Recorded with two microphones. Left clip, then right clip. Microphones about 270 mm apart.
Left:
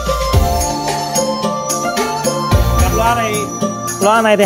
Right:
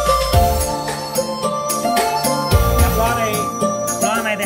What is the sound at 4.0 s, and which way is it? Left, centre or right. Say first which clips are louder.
Music: left 10 dB; centre.